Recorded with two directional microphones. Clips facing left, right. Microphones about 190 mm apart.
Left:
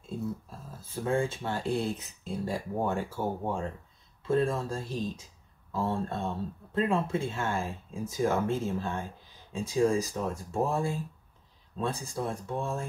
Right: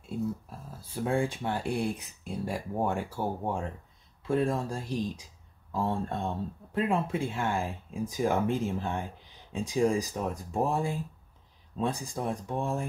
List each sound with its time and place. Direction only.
0.8 s speech: 15° right (ahead or behind)